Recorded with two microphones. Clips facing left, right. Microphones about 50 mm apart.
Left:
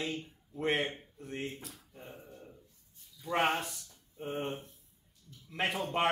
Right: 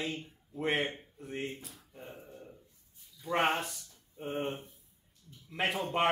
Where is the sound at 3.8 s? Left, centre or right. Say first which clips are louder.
Right 1 dB; centre.